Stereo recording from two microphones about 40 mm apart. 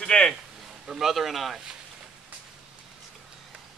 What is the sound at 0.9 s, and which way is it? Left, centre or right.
Speech, centre.